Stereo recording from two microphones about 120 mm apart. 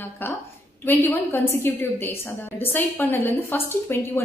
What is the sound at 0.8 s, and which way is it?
A woman's voice, 15° left (ahead or behind).